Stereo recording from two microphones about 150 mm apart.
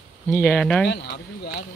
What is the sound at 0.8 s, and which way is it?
Speech, 90° left.